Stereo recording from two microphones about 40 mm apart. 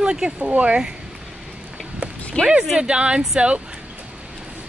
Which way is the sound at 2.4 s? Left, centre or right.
Left.